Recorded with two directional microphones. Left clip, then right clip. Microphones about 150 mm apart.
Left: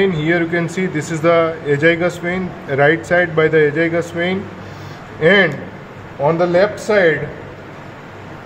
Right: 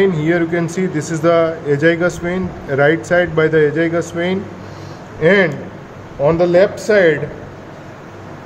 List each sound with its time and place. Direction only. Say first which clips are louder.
0.0 s speech: right 1 dB; 15° right (ahead or behind)
6.2 s speech: right 2 dB; 30° right (ahead or behind)